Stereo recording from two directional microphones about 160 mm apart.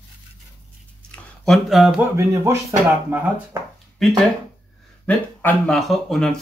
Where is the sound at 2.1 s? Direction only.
15° right (ahead or behind).